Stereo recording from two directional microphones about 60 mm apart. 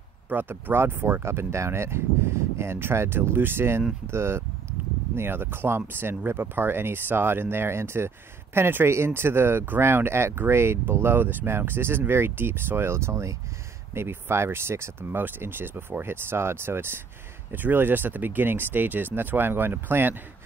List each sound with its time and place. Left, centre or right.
0.3 s speech: right
13.9 s speech: right